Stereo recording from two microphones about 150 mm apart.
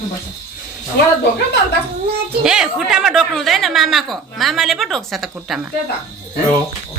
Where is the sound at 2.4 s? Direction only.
5° right (ahead or behind).